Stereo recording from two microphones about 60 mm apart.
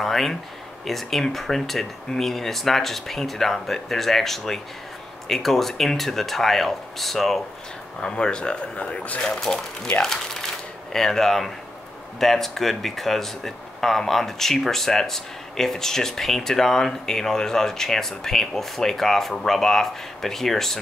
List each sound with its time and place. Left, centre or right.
0.0 s speech: centre
8.0 s speech: centre
9.2 s speech: centre